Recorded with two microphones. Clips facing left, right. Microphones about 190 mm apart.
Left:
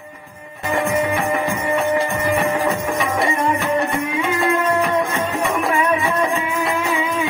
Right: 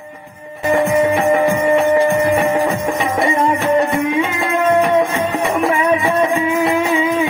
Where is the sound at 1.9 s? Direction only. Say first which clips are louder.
Right 6 dB; 20° right (ahead or behind).